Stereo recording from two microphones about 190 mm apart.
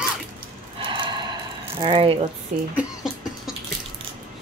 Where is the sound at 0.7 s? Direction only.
25° right (ahead or behind).